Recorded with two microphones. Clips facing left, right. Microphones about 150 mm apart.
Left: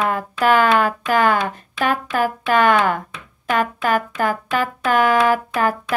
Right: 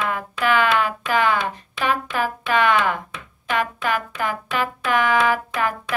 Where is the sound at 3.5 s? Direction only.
45° left (ahead or behind).